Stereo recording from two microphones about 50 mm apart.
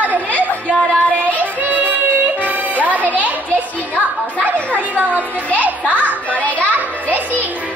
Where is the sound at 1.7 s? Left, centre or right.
Right.